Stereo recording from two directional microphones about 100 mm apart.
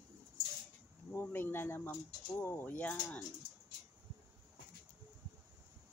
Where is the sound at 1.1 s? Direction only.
20° left (ahead or behind).